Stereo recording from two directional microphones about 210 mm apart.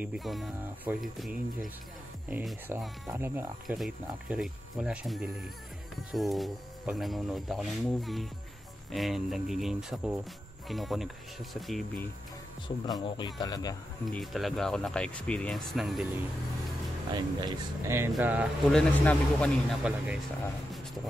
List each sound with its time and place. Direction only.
0.0 s a man's voice: 5° right (ahead or behind)
13.0 s speech: 20° left (ahead or behind)
14.1 s speech: centre (ahead or behind)
17.1 s a man's voice: 20° right (ahead or behind); by 20.2 s centre (ahead or behind)